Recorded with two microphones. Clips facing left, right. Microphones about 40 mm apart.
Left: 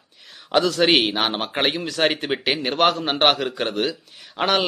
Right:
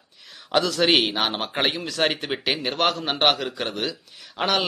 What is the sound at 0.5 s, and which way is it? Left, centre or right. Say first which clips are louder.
A man's voice: left 2 dB; centre.